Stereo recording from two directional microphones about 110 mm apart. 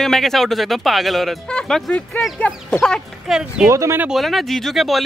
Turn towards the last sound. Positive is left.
turn(degrees=0)  # may be behind; listen again after turning